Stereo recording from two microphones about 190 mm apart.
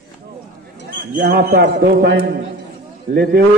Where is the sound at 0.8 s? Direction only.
45° right (ahead or behind).